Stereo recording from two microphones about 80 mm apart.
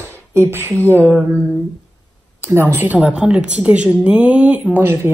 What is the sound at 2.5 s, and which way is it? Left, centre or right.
Speech, right.